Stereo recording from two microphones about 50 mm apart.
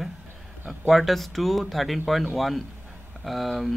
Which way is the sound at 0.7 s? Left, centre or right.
Centre.